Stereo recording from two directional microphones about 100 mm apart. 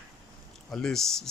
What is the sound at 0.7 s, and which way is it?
Speech, 5° left (ahead or behind).